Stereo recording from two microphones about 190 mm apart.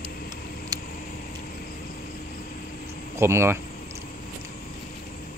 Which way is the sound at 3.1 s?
15° right (ahead or behind).